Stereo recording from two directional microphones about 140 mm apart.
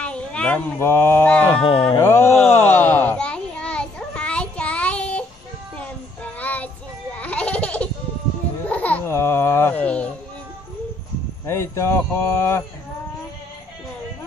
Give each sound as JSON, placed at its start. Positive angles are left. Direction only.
{"t": 0.0, "sound": "speech", "side_deg": 10}
{"t": 1.6, "sound": "speech", "side_deg": 40}
{"t": 2.0, "sound": "a sound", "side_deg": 20}
{"t": 5.8, "sound": "child singing", "side_deg": 10}
{"t": 7.2, "sound": "baby laughter", "side_deg": 10}
{"t": 8.6, "sound": "a sound", "side_deg": 10}
{"t": 11.4, "sound": "speech", "side_deg": 20}